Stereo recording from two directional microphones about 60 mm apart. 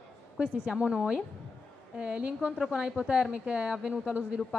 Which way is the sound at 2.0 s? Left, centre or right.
Right.